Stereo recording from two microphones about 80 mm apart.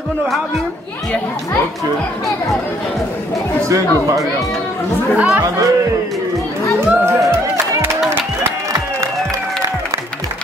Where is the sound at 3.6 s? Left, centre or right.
Right.